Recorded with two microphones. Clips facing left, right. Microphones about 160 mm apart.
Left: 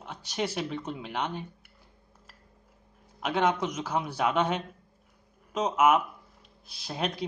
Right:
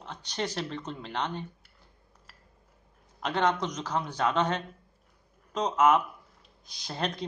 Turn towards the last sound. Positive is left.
turn(degrees=5)  # may be behind; listen again after turning